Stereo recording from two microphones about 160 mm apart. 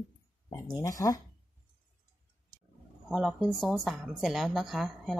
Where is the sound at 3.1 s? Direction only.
5° right (ahead or behind).